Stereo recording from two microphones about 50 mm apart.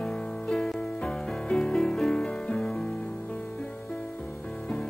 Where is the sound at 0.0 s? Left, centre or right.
Centre.